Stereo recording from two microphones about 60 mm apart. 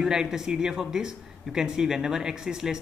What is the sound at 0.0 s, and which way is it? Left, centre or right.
Speech, centre.